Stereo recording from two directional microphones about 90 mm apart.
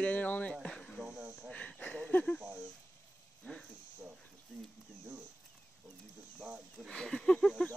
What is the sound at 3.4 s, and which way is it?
Speech, 5° left (ahead or behind).